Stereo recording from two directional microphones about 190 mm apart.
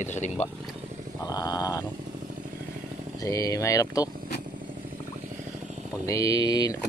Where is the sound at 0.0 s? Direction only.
40° left (ahead or behind).